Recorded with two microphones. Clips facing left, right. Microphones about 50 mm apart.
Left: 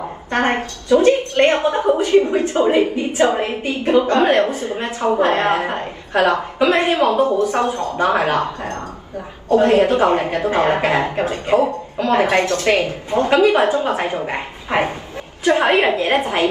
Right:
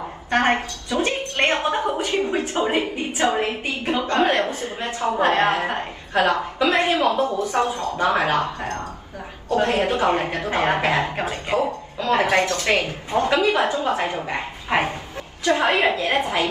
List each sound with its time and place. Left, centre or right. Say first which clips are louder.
0.5 s a woman's voice: left 6 dB; left
1.0 s a woman's voice: left 5 dB; right
1.8 s a woman's voice: left 7 dB; left
2.4 s a woman's voice: left 6 dB; right
3.2 s a woman's voice: left 4 dB; left
3.6 s a woman's voice: left 6 dB; right
4.1 s a woman's voice: left 5 dB; left